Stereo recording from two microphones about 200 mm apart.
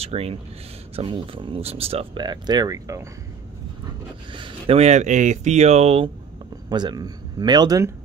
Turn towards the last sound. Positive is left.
turn(degrees=-15)  # may be behind; listen again after turning